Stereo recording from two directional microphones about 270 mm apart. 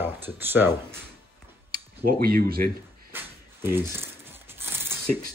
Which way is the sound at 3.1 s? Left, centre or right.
Centre.